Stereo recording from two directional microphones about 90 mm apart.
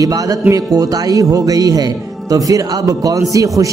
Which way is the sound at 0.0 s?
40° right (ahead or behind).